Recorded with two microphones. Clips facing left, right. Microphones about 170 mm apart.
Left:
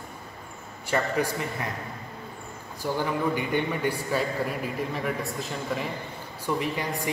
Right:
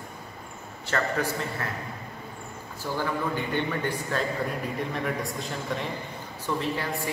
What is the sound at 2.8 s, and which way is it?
A man's voice, 15° left (ahead or behind).